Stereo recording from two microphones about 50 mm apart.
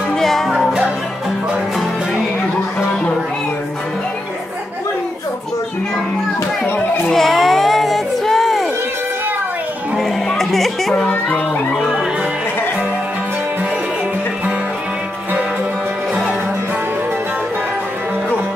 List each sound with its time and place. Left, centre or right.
0.1 s music: centre
7.1 s a sound: centre
9.9 s music: centre
11.1 s a child's voice: left